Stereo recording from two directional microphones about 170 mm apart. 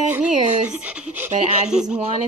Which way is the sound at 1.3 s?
45° right (ahead or behind).